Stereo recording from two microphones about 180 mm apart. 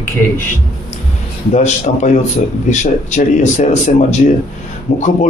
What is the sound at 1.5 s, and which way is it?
A man's voice, 40° left (ahead or behind).